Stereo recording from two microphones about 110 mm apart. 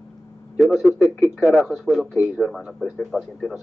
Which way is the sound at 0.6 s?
10° right (ahead or behind).